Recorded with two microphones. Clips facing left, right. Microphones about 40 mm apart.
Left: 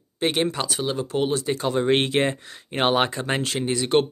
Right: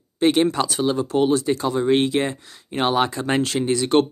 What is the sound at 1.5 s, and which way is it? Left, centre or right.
Speech, left.